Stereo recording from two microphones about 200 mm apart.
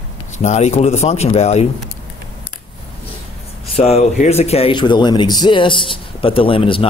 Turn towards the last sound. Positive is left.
turn(degrees=25)  # may be behind; listen again after turning